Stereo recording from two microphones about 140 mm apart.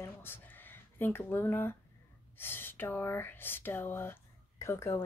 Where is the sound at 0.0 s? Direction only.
15° left (ahead or behind).